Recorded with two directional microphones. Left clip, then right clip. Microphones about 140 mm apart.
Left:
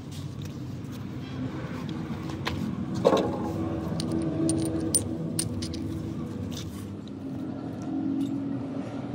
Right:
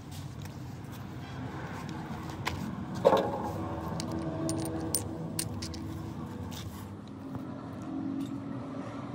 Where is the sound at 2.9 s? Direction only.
30° right (ahead or behind).